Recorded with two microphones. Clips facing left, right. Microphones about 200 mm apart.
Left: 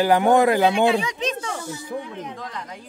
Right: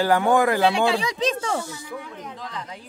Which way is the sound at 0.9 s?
35° right (ahead or behind).